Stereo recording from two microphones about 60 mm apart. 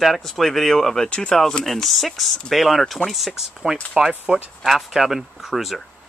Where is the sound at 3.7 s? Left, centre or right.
Centre.